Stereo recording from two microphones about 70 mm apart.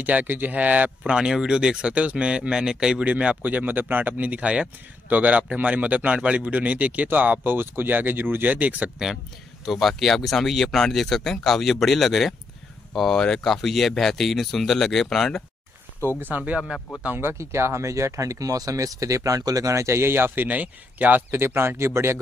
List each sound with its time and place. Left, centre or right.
0.0 s speech: right
1.1 s speech: centre
9.7 s speech: centre
16.2 s speech: right
21.3 s speech: right